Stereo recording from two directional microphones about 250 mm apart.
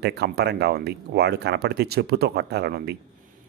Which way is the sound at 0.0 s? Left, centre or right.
Right.